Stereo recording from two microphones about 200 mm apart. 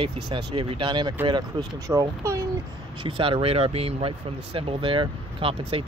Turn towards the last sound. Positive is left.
turn(degrees=-25)  # may be behind; listen again after turning